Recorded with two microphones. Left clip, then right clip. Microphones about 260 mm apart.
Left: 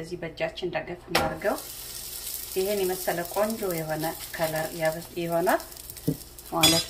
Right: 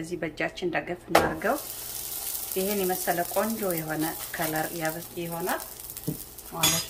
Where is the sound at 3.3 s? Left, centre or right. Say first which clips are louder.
Left 1 dB; centre.